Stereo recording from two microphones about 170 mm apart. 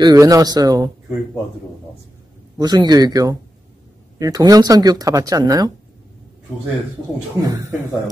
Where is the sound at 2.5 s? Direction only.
25° right (ahead or behind).